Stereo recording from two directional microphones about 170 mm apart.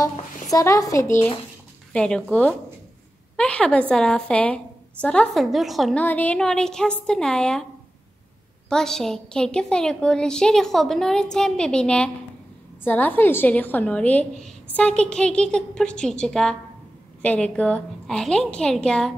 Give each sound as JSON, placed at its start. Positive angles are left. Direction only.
{"t": 0.0, "sound": "a woman's voice", "side_deg": 20}
{"t": 1.9, "sound": "a woman's voice", "side_deg": 5}
{"t": 8.6, "sound": "a woman's voice", "side_deg": 5}